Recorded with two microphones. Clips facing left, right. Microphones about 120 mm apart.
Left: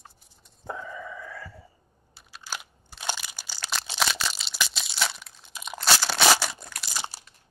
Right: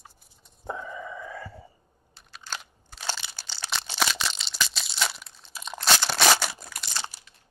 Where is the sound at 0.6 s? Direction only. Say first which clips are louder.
Right 1 dB; 20° right (ahead or behind).